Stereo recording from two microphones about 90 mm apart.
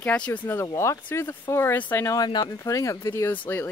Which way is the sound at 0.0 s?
15° left (ahead or behind).